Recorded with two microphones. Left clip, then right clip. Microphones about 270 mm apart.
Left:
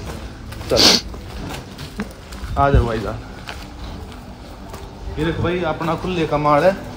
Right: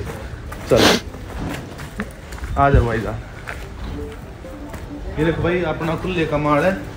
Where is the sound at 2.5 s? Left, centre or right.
Centre.